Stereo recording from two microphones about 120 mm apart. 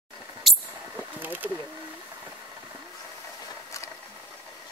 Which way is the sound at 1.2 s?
15° right (ahead or behind).